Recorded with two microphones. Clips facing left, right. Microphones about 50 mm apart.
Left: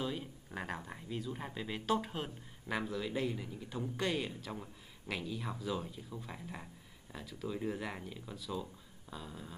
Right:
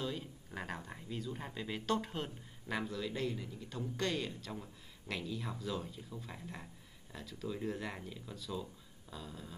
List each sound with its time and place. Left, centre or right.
0.0 s speech: centre